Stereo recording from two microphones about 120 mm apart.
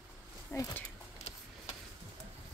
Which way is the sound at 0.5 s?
20° left (ahead or behind).